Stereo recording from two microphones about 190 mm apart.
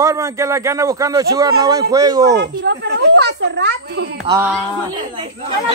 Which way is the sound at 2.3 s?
65° right (ahead or behind).